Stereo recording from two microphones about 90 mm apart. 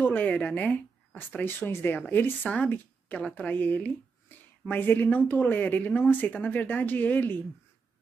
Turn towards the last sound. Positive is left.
turn(degrees=20)  # may be behind; listen again after turning